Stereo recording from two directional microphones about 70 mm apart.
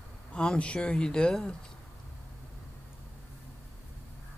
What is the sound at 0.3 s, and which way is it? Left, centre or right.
Speech, centre.